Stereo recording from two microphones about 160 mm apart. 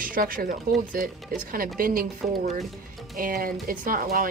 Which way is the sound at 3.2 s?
60° right (ahead or behind).